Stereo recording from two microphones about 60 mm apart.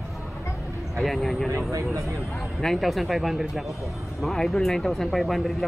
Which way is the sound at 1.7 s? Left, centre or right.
Right.